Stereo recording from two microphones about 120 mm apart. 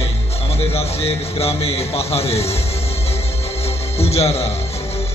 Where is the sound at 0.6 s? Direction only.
55° left (ahead or behind).